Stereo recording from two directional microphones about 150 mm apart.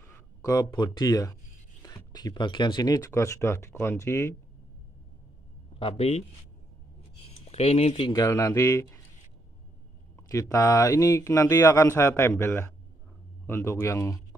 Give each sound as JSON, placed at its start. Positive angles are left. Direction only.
{"t": 0.0, "sound": "speech", "side_deg": 20}
{"t": 5.8, "sound": "speech", "side_deg": 40}
{"t": 7.4, "sound": "speech", "side_deg": 45}
{"t": 8.0, "sound": "speech", "side_deg": 25}
{"t": 10.2, "sound": "speech", "side_deg": 20}